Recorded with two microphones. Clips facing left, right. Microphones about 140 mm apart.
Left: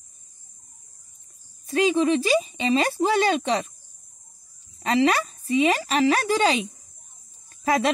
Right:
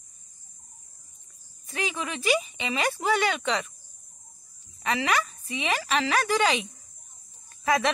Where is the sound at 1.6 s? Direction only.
30° left (ahead or behind).